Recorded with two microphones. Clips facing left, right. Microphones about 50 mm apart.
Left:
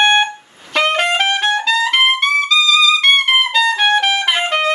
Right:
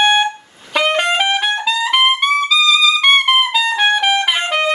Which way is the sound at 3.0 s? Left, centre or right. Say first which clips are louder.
Right 1 dB; centre.